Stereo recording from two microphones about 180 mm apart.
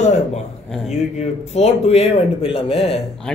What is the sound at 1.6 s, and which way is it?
Speech, 35° left (ahead or behind).